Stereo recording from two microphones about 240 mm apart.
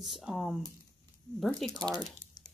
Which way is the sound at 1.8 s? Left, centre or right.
Centre.